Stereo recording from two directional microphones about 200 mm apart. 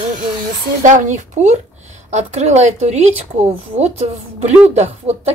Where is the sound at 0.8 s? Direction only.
40° right (ahead or behind).